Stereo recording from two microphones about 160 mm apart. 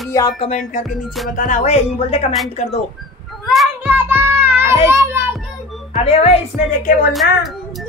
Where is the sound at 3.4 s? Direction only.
Centre (ahead or behind).